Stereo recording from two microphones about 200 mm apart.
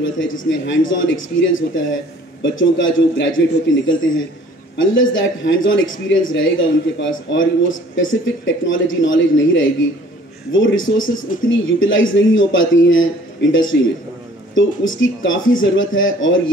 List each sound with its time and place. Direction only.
0.0 s a man's voice: 75° left (ahead or behind)